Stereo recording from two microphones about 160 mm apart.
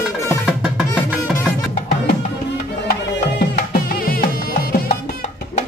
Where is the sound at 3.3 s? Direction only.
70° left (ahead or behind).